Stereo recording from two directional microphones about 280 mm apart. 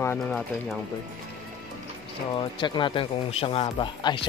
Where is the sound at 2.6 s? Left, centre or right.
Centre.